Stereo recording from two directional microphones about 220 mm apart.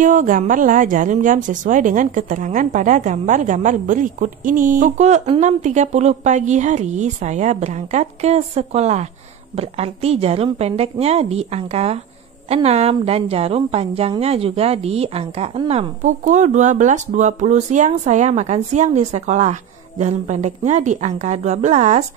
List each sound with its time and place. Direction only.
0.0 s a woman's voice: 35° right (ahead or behind)